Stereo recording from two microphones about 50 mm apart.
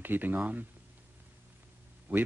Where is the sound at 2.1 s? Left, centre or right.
Right.